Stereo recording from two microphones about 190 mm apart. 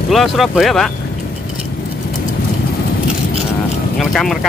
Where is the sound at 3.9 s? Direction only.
Centre (ahead or behind).